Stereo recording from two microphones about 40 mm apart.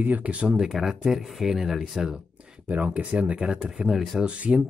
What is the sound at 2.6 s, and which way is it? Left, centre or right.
Speech, right.